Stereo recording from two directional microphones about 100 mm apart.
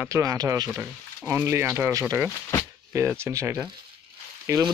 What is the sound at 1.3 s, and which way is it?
Speech, 25° right (ahead or behind).